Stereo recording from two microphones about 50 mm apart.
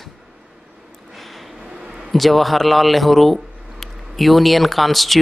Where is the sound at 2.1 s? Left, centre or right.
Centre.